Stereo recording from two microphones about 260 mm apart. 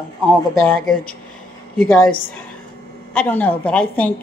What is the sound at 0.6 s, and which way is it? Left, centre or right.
Speech, centre.